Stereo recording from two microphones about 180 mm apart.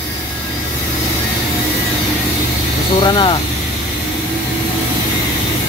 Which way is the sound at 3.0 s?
25° left (ahead or behind).